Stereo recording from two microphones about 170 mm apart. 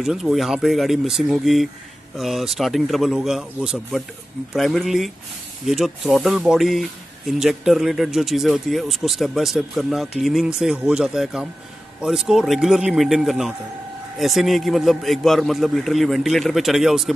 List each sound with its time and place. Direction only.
0.0 s speech: centre (ahead or behind)